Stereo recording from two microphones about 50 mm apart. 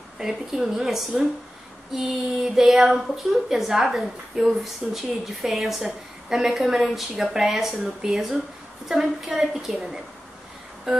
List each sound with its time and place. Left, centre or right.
0.2 s a woman's voice: centre